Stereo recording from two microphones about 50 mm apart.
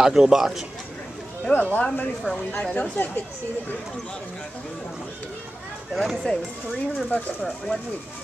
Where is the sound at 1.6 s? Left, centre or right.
Left.